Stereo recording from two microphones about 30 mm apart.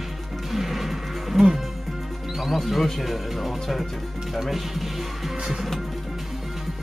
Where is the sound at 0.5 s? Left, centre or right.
Centre.